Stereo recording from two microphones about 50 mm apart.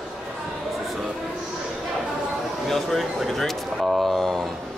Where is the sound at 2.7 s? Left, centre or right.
Centre.